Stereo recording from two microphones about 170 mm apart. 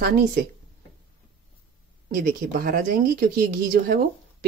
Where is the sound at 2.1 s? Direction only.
60° right (ahead or behind).